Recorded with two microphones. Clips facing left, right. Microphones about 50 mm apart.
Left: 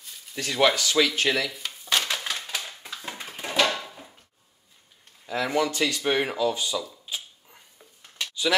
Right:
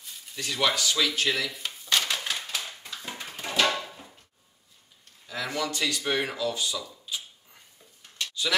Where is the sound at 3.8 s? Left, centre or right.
Centre.